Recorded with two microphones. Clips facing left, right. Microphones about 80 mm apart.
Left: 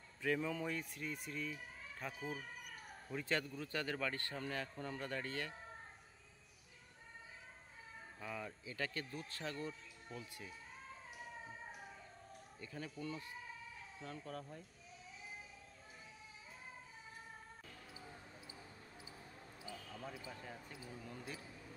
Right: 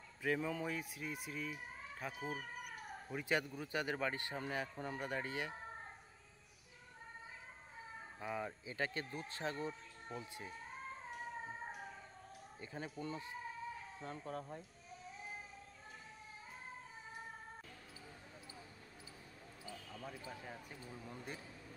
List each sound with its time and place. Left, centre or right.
0.2 s speech: centre
2.2 s speech: right
3.1 s speech: centre
8.2 s speech: right
10.1 s speech: right
12.5 s speech: right
19.7 s basketball bounce: centre
20.2 s speech: centre